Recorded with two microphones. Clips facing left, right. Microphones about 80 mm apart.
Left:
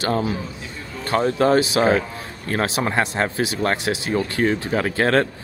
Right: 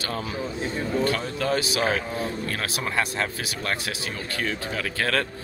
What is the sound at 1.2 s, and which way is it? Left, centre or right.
Speech, left.